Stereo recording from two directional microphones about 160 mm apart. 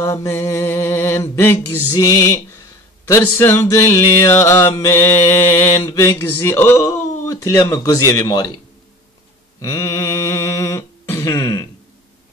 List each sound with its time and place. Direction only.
0.0 s mantra: 20° left (ahead or behind)
2.0 s music: 20° left (ahead or behind)
3.1 s mantra: 15° left (ahead or behind)
9.6 s a sound: 20° left (ahead or behind)